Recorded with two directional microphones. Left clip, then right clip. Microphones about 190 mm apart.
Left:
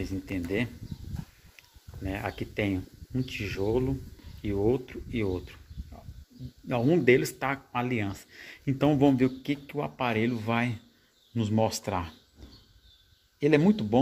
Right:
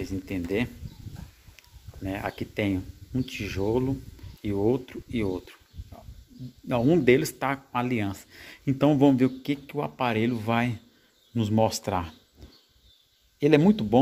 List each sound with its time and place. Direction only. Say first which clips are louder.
0.0 s speech: right 2 dB; 20° right (ahead or behind)
2.0 s speech: right 2 dB; 20° right (ahead or behind)
6.7 s speech: right 2 dB; 20° right (ahead or behind)
13.4 s speech: right 3 dB; 20° right (ahead or behind)